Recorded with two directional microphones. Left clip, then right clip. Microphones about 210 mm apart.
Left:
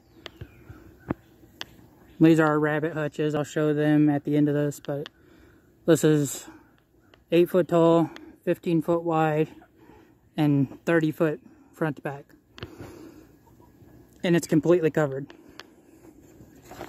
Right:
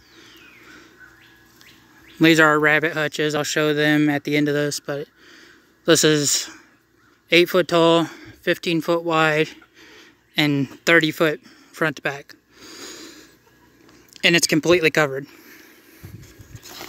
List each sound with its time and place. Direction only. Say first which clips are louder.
2.1 s speech: right 5 dB; 5° right (ahead or behind)
5.9 s speech: right 5 dB; 5° right (ahead or behind)
7.5 s speech: right 4 dB; 10° right (ahead or behind)
14.1 s speech: right 7 dB; 5° right (ahead or behind)